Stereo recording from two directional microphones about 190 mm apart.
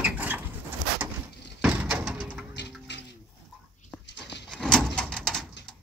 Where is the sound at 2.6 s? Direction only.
65° left (ahead or behind).